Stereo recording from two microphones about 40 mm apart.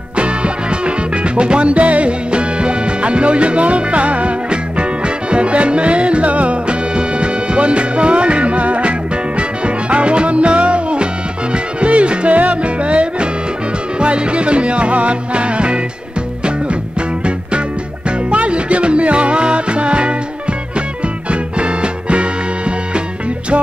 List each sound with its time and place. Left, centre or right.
0.2 s music: right
18.3 s music: right